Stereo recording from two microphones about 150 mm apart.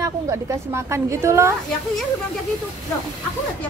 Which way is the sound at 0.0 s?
20° right (ahead or behind).